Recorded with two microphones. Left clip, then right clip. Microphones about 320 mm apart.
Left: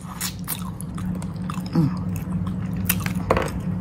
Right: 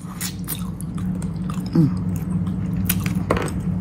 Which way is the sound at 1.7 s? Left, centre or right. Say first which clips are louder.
Right 4 dB; centre.